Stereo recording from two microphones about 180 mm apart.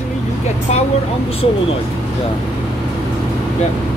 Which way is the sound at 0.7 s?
35° left (ahead or behind).